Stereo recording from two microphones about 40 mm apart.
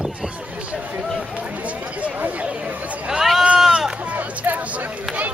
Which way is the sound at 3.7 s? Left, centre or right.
Centre.